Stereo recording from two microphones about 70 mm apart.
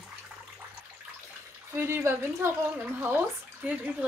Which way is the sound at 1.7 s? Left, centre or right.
Right.